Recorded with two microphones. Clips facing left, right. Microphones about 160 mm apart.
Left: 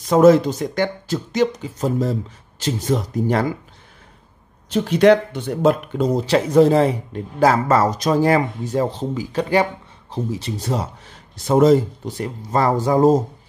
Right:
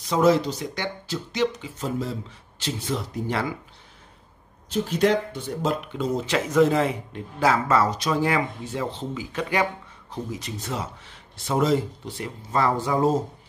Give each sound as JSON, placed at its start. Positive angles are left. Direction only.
{"t": 0.1, "sound": "speech", "side_deg": 50}
{"t": 4.6, "sound": "speech", "side_deg": 70}